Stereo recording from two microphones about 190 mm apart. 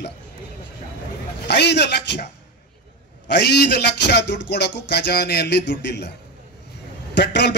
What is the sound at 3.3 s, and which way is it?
A man's voice, 65° left (ahead or behind).